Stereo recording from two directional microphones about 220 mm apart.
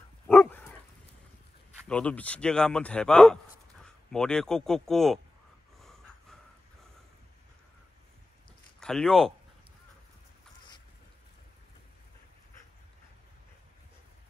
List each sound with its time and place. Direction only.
0.3 s dog: 10° left (ahead or behind)
1.9 s a man's voice: 5° left (ahead or behind)
8.7 s speech: 5° left (ahead or behind)